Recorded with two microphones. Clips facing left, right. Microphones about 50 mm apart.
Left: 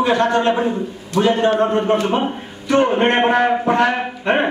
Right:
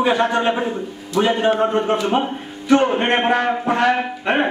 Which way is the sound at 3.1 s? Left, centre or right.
Centre.